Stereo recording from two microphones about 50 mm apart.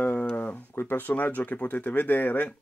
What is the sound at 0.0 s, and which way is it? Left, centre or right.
Speech, left.